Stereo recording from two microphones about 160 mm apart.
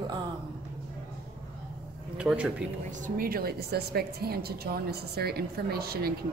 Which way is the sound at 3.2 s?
65° right (ahead or behind).